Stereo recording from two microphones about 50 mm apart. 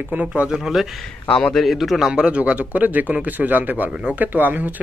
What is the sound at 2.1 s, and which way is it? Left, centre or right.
Speech, right.